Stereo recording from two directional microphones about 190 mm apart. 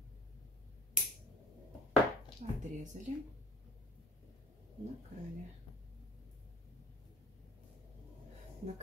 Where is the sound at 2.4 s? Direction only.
40° right (ahead or behind).